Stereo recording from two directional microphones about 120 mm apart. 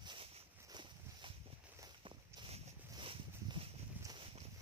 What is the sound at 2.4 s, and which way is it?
Zipper, 50° right (ahead or behind).